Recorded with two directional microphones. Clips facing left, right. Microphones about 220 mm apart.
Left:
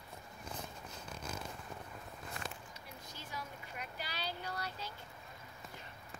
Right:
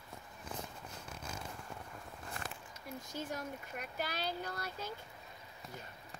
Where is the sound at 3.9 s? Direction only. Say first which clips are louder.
Right 6 dB; 50° right (ahead or behind).